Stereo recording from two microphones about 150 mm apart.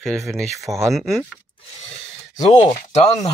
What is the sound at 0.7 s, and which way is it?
Speech, 25° right (ahead or behind).